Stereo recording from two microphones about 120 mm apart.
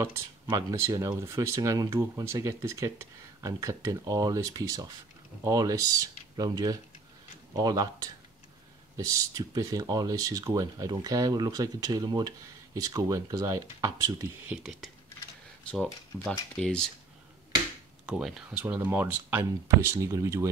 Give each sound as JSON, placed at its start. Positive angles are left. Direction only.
{"t": 0.0, "sound": "speech", "side_deg": -30}
{"t": 14.5, "sound": "speech", "side_deg": 0}
{"t": 18.0, "sound": "speech", "side_deg": -5}
{"t": 18.7, "sound": "speech", "side_deg": -15}